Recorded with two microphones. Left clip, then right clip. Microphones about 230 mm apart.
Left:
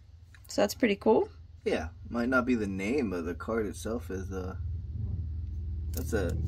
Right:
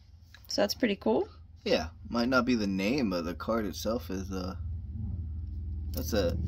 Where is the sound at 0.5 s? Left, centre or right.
Centre.